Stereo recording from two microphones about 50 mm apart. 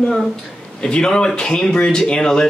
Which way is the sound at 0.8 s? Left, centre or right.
Centre.